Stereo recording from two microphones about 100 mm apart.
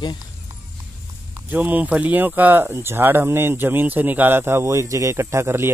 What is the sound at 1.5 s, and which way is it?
Speech, 15° right (ahead or behind).